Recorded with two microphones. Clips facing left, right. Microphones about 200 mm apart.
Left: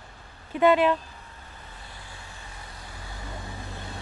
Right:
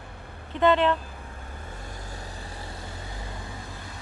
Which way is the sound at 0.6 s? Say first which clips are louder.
Left 1 dB; 10° left (ahead or behind).